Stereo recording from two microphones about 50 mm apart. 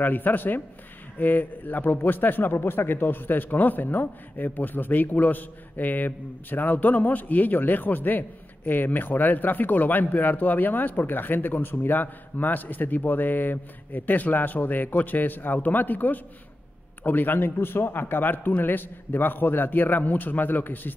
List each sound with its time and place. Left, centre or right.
0.0 s a man's voice: left